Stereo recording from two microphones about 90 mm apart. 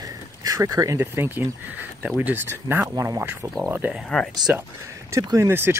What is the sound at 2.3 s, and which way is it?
Speech, 25° right (ahead or behind).